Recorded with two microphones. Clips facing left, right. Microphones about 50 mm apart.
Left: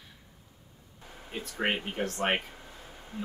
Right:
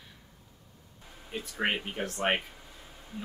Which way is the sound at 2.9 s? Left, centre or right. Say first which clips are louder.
Left 2 dB; left.